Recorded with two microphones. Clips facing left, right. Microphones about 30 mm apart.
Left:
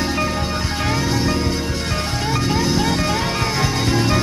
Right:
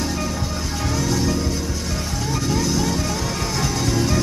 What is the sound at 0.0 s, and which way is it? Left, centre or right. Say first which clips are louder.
Music: left 4 dB; left.